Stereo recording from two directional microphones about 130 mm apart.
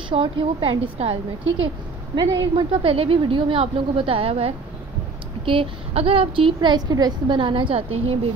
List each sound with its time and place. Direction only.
0.1 s a woman's voice: 45° right (ahead or behind)
2.1 s a woman's voice: 45° right (ahead or behind)